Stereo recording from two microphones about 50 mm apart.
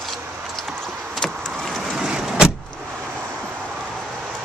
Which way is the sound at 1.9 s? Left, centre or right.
Centre.